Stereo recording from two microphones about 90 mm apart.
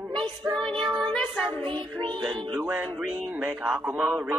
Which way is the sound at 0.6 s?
75° right (ahead or behind).